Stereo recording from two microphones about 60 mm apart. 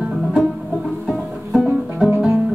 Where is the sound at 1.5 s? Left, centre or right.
Centre.